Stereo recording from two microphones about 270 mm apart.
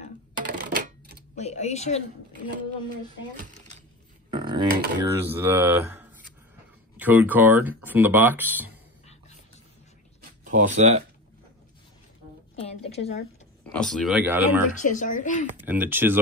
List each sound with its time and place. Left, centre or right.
0.5 s typewriter: right
1.3 s speech: left
4.3 s a sound: centre
4.9 s speech: centre
10.4 s speech: right
12.5 s a woman's voice: left
13.7 s speech: centre
14.8 s speech: left
15.6 s speech: centre